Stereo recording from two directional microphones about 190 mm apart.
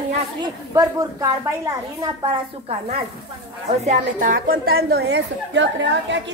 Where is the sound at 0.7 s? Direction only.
20° right (ahead or behind).